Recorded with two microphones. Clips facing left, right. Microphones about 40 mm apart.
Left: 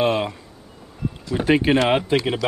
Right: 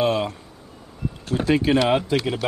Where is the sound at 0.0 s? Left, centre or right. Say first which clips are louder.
Left 1 dB; left.